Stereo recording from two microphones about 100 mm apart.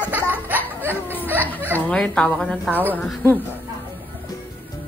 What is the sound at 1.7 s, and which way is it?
A woman's voice, 15° left (ahead or behind).